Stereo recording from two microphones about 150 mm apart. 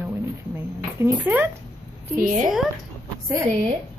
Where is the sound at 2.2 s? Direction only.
55° right (ahead or behind).